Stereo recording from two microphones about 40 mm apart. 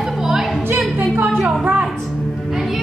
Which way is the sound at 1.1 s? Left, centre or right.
Right.